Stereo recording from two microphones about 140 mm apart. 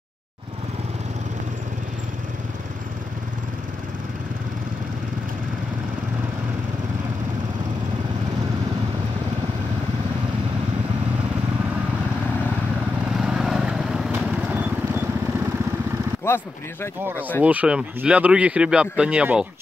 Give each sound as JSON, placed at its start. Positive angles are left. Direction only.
{"t": 13.2, "sound": "vehicle", "side_deg": -5}
{"t": 16.3, "sound": "speech", "side_deg": 15}
{"t": 17.4, "sound": "a man's voice", "side_deg": -10}